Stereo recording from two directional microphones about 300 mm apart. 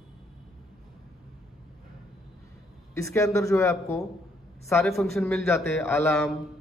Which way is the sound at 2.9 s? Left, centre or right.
Centre.